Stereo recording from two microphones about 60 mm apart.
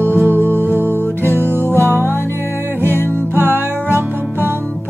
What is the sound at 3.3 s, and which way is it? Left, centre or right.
Music, right.